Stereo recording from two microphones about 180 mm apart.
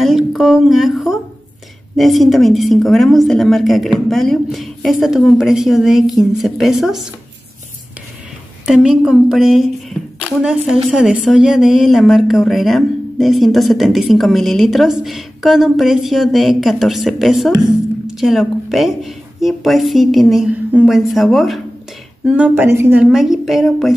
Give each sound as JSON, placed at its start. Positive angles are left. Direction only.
{"t": 0.0, "sound": "a woman's voice", "side_deg": 0}
{"t": 8.6, "sound": "a woman's voice", "side_deg": -5}
{"t": 22.6, "sound": "a woman's voice", "side_deg": -15}